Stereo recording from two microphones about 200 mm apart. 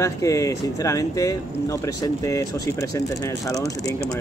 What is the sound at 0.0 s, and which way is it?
Speech, 15° left (ahead or behind).